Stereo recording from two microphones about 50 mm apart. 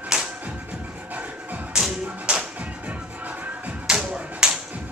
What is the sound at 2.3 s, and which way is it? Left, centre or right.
Music, right.